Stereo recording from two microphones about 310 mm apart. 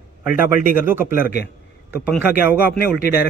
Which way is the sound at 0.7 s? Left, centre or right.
Centre.